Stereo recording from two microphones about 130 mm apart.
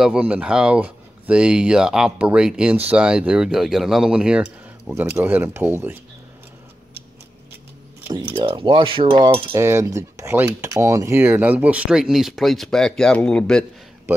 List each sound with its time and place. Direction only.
0.0 s speech: 10° right (ahead or behind)
8.4 s mechanisms: 40° right (ahead or behind)
9.5 s speech: 20° right (ahead or behind); by 13.7 s 5° left (ahead or behind)